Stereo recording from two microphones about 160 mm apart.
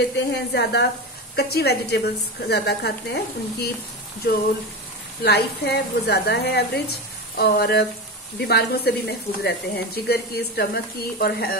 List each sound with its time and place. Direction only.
0.3 s speech: 90° left
5.2 s speech: 90° left